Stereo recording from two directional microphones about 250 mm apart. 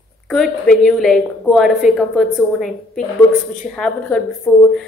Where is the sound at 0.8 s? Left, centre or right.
Centre.